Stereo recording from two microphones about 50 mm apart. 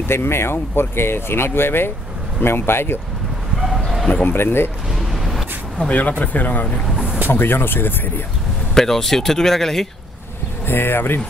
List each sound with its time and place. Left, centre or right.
0.1 s speech: left
4.1 s speech: left
4.9 s a sound: centre
5.9 s speech: left
7.2 s speech: left
8.7 s speech: centre
10.7 s speech: left